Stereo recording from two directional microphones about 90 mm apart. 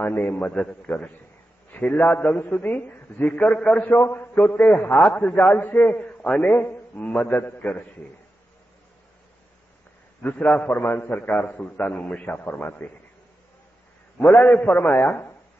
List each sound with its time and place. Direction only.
0.0 s a man's voice: 20° left (ahead or behind)
3.3 s a man's voice: 10° left (ahead or behind)
3.8 s a man's voice: 25° left (ahead or behind)
6.2 s a man's voice: 5° left (ahead or behind)
7.0 s a man's voice: 15° left (ahead or behind)
10.2 s a man's voice: 15° left (ahead or behind)
14.1 s a man's voice: 15° left (ahead or behind)